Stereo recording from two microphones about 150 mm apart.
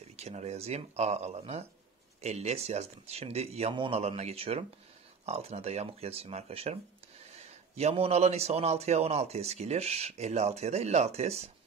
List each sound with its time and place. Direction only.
0.1 s a man's voice: 50° right (ahead or behind)